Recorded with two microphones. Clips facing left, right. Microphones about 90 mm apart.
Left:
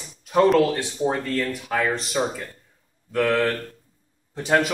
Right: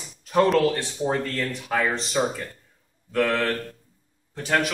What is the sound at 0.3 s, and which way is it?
Speech, 5° left (ahead or behind).